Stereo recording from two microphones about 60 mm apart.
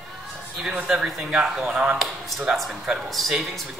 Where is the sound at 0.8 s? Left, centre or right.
Centre.